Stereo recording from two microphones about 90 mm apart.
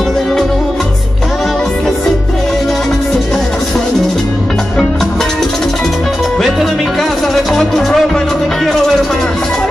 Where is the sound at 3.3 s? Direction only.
5° left (ahead or behind).